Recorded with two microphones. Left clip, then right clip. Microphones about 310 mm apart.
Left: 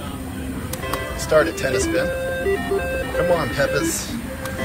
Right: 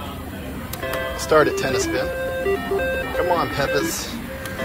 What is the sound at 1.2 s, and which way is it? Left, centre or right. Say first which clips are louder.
Speech: right 1 dB; right.